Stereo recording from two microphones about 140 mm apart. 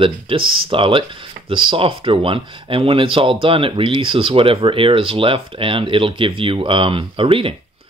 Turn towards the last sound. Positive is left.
turn(degrees=-40)  # may be behind; listen again after turning